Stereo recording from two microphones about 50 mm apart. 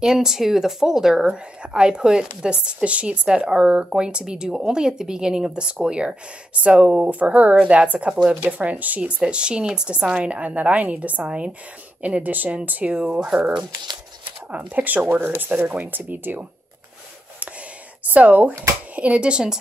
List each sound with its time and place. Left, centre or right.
0.0 s a woman's voice: centre; by 9.2 s right
9.2 s a woman's voice: centre
14.5 s speech: right
18.0 s a woman's voice: right